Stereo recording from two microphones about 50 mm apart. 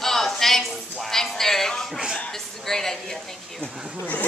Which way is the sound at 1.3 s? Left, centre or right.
Centre.